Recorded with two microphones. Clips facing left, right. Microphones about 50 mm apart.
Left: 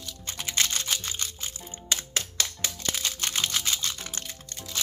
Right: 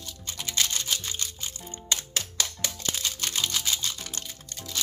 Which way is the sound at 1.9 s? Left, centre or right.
Left.